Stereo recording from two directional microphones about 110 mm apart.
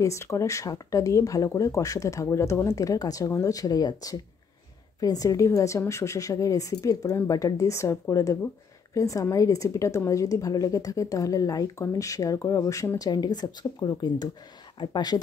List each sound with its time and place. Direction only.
0.0 s a woman's voice: 30° left (ahead or behind)